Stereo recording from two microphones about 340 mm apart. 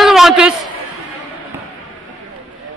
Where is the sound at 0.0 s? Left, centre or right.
Centre.